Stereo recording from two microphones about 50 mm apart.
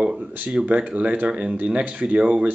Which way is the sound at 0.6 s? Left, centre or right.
Right.